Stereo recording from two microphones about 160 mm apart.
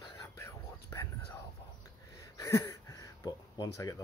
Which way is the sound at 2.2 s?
20° left (ahead or behind).